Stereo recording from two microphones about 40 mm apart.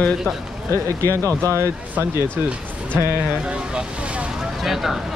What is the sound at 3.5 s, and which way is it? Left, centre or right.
Speech, right.